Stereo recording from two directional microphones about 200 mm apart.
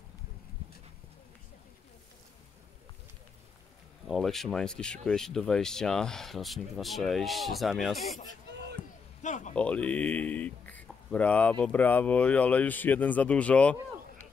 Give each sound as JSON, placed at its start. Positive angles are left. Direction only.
{"t": 4.1, "sound": "speech", "side_deg": 0}
{"t": 8.8, "sound": "a sound", "side_deg": 5}
{"t": 9.2, "sound": "speech", "side_deg": 35}
{"t": 9.6, "sound": "speech", "side_deg": 5}